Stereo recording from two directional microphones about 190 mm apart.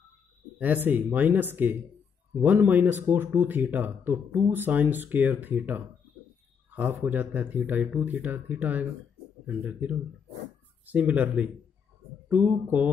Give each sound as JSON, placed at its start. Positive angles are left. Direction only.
{"t": 0.6, "sound": "speech", "side_deg": -10}